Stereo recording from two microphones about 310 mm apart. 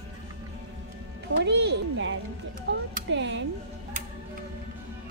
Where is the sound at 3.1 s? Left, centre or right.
Right.